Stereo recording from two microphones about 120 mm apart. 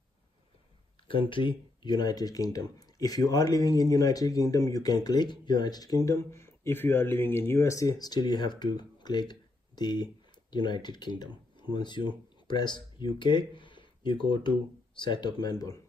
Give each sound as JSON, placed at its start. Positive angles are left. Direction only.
{"t": 1.3, "sound": "speech", "side_deg": 45}